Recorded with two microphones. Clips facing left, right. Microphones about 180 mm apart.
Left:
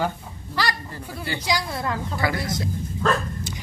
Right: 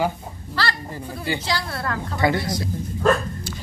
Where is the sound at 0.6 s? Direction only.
15° left (ahead or behind).